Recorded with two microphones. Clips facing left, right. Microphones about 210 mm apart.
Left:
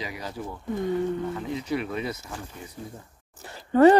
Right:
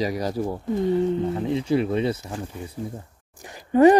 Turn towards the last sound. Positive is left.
turn(degrees=-15)  # may be behind; listen again after turning